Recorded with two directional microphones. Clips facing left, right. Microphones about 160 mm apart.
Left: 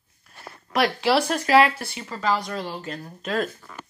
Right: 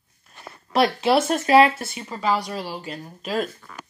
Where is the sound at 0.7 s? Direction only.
20° right (ahead or behind).